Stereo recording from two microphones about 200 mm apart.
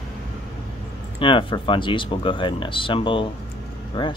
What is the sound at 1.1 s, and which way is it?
Speech, 25° left (ahead or behind).